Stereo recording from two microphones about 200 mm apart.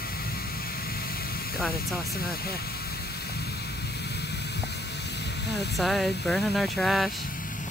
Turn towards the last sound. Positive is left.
turn(degrees=0)  # may be behind; listen again after turning